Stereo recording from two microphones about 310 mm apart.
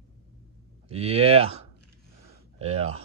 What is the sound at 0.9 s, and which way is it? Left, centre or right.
Speech, centre.